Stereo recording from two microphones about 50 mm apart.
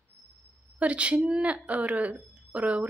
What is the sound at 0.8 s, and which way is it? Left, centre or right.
A woman's voice, right.